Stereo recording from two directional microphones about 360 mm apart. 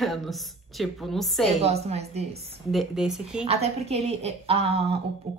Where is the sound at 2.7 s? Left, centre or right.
Centre.